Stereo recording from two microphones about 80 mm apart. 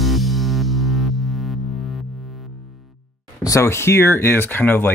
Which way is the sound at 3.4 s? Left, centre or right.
Left.